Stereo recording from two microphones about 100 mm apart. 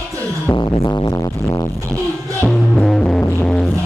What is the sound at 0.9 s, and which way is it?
Music, 35° left (ahead or behind).